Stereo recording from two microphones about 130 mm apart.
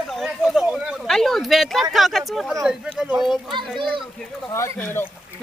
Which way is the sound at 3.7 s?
Centre (ahead or behind).